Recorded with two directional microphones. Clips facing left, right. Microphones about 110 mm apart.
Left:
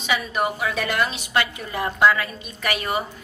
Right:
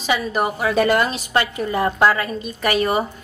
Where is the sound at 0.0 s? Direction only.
35° right (ahead or behind).